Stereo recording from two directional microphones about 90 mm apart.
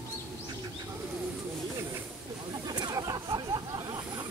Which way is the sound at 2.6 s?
50° right (ahead or behind).